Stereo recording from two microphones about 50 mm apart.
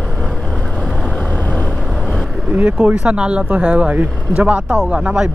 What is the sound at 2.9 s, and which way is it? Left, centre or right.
Speech, right.